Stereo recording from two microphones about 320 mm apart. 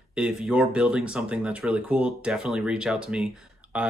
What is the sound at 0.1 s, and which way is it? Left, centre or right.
Speech, centre.